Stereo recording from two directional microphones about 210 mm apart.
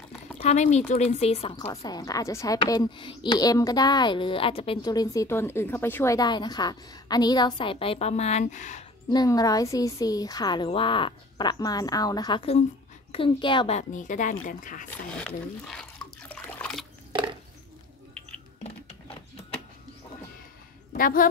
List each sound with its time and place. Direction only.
0.4 s a child's voice: 30° left (ahead or behind)
1.6 s a woman's voice: 15° left (ahead or behind); by 8.8 s 35° left (ahead or behind)
9.1 s a child's voice: 20° left (ahead or behind); by 14.9 s 40° left (ahead or behind)
14.9 s water: 5° left (ahead or behind)
20.9 s speech: 40° left (ahead or behind)